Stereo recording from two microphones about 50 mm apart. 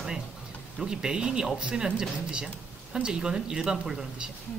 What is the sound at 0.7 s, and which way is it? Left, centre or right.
Speech, centre.